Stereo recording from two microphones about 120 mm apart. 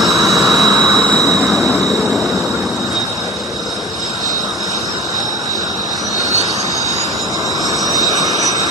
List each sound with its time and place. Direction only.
0.0 s train: centre (ahead or behind)
7.8 s vehicle: 30° right (ahead or behind)